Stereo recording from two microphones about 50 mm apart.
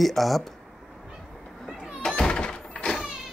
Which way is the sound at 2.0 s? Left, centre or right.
Centre.